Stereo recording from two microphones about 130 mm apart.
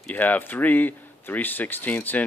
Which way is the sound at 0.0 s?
15° left (ahead or behind).